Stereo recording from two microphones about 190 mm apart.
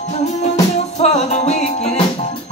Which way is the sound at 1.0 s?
35° left (ahead or behind).